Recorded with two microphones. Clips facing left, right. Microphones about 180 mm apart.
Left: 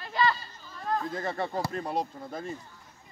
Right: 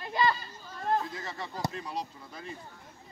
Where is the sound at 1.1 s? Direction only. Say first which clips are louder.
Left 8 dB; 55° left (ahead or behind).